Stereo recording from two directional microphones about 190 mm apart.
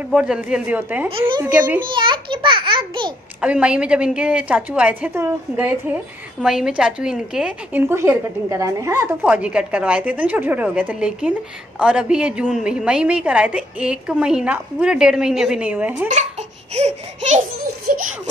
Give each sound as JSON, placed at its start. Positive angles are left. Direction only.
{"t": 0.1, "sound": "a woman's voice", "side_deg": -5}
{"t": 1.8, "sound": "a child's voice", "side_deg": -25}
{"t": 3.3, "sound": "a woman's voice", "side_deg": -5}
{"t": 16.7, "sound": "a sound", "side_deg": -35}